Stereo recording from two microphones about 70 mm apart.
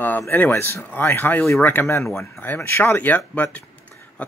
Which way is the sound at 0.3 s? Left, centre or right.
Left.